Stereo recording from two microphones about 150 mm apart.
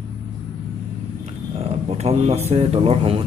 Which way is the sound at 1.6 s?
45° right (ahead or behind).